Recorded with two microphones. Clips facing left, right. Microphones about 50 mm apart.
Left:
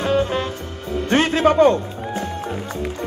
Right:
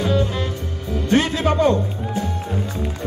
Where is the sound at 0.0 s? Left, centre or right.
Left.